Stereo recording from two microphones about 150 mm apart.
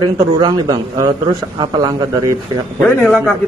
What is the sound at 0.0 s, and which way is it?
Speech, 30° right (ahead or behind).